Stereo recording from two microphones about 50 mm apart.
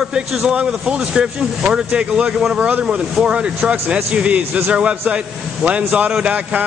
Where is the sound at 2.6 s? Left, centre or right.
Right.